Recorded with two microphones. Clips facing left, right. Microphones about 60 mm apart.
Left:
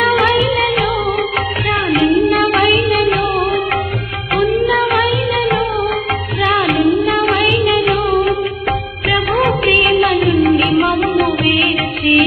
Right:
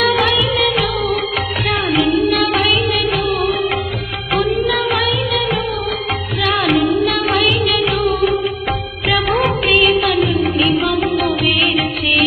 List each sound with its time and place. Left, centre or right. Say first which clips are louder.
0.0 s music: left 2 dB; left
1.7 s music: left 2 dB; left
2.3 s singing: left 3 dB; left
2.8 s music of bollywood: left 3 dB; left
4.8 s music: left 3 dB; left
7.2 s music of bollywood: left 2 dB; left
7.7 s music: left 3 dB; left